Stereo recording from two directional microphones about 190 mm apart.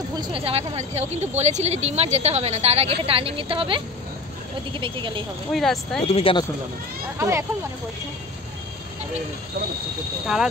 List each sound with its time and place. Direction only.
0.1 s a woman's voice: 25° right (ahead or behind)
5.5 s speech: centre (ahead or behind)
6.0 s speech: 30° left (ahead or behind)
7.2 s speech: 15° right (ahead or behind)
10.2 s speech: 5° right (ahead or behind)